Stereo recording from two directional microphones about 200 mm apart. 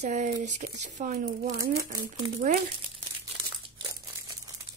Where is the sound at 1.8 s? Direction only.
15° right (ahead or behind).